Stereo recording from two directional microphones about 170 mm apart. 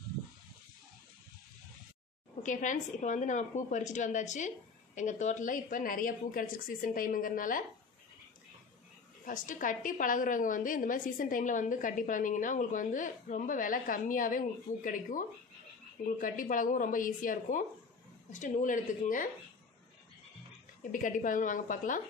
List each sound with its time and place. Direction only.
2.4 s a woman's voice: 50° left (ahead or behind)
9.2 s a woman's voice: 50° left (ahead or behind)
20.9 s a woman's voice: 50° left (ahead or behind)